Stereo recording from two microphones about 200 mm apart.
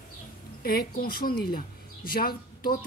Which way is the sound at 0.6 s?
50° left (ahead or behind).